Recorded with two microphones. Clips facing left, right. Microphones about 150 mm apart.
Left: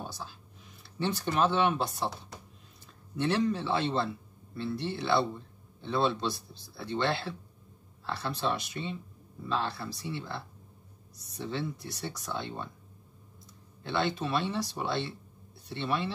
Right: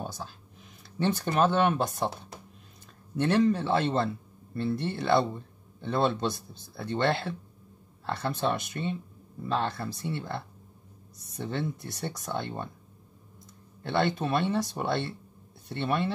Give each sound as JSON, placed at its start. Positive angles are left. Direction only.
{"t": 0.9, "sound": "speech", "side_deg": -50}
{"t": 3.2, "sound": "speech", "side_deg": -50}
{"t": 11.3, "sound": "speech", "side_deg": -50}
{"t": 13.8, "sound": "speech", "side_deg": -50}